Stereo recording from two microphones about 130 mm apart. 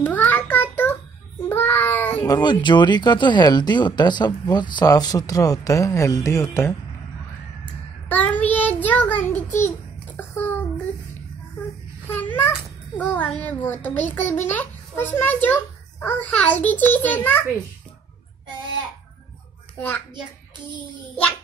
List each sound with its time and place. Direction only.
0.0 s child singing: 15° left (ahead or behind)
2.2 s speech: 35° left (ahead or behind)
8.1 s child singing: 10° left (ahead or behind)
8.8 s a sound: 10° left (ahead or behind)
12.2 s a child's voice: 15° left (ahead or behind)